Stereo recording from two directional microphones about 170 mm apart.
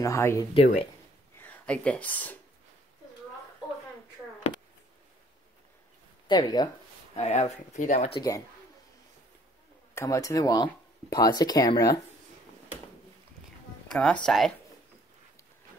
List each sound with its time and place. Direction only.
0.0 s speech: 15° left (ahead or behind)
0.6 s speech: 40° left (ahead or behind)
1.3 s speech: 10° left (ahead or behind)
6.2 s speech: 25° left (ahead or behind)
7.2 s speech: 40° left (ahead or behind)
9.9 s speech: 20° left (ahead or behind)
13.8 s speech: 5° left (ahead or behind)